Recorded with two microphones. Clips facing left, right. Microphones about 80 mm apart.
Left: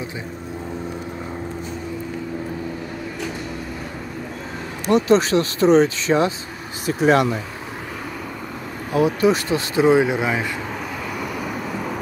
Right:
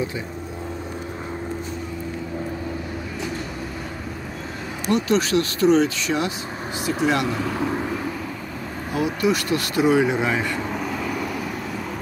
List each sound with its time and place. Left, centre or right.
4.8 s speech: left
6.9 s speech: left
8.9 s speech: left; by 10.6 s centre
11.1 s vehicle: centre